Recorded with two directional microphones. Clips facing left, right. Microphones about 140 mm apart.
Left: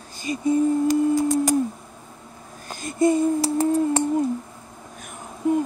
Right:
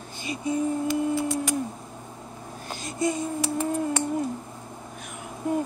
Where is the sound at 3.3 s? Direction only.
35° left (ahead or behind).